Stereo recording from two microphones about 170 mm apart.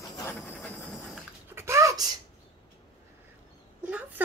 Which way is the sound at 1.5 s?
15° right (ahead or behind).